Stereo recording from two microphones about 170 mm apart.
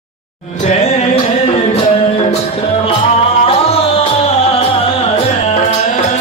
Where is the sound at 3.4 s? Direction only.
35° left (ahead or behind).